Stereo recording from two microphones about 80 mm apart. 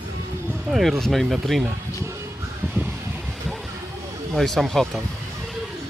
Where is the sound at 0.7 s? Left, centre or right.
Centre.